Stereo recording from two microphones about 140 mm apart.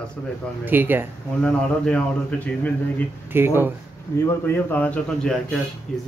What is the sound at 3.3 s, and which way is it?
Speech, 15° right (ahead or behind).